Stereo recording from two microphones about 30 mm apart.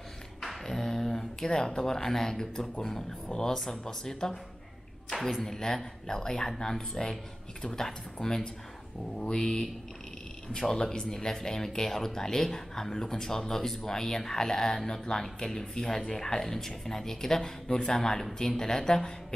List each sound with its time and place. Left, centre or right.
0.7 s speech: centre
10.7 s speech: left